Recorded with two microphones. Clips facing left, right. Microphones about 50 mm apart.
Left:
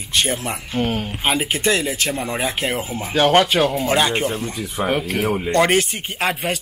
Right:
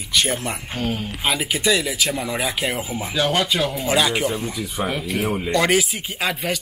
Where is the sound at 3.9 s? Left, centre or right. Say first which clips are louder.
Right 1 dB; left.